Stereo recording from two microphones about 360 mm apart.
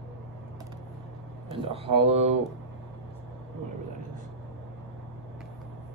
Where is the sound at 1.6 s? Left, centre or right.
Centre.